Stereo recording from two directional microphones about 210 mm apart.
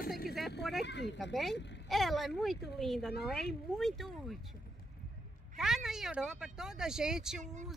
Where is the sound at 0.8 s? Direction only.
55° left (ahead or behind).